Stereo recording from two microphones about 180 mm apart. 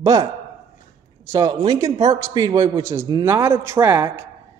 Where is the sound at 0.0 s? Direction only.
20° right (ahead or behind).